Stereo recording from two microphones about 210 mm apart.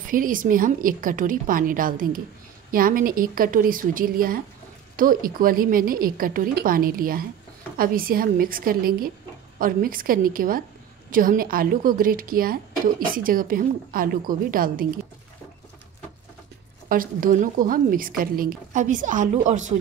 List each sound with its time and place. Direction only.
0.0 s a woman's voice: 40° right (ahead or behind)
16.9 s a woman's voice: 40° right (ahead or behind)